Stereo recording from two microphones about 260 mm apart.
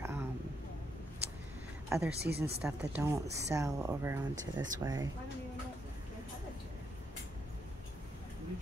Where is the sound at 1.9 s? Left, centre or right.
Centre.